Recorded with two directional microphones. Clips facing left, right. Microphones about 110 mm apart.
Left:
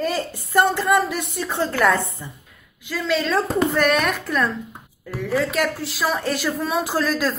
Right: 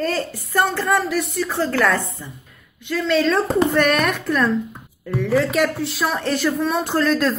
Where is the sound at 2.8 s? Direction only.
Centre (ahead or behind).